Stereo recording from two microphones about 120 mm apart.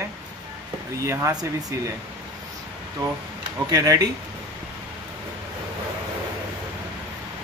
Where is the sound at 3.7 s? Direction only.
30° right (ahead or behind).